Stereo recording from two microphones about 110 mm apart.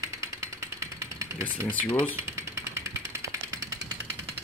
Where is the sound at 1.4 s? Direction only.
15° left (ahead or behind).